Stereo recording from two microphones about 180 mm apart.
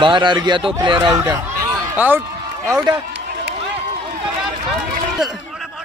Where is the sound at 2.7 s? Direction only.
20° right (ahead or behind).